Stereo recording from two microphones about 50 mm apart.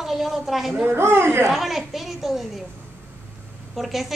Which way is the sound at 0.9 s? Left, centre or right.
Right.